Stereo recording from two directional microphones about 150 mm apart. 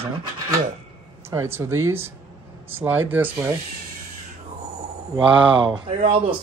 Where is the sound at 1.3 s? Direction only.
20° right (ahead or behind).